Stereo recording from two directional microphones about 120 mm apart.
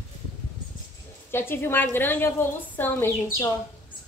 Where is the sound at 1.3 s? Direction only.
20° left (ahead or behind).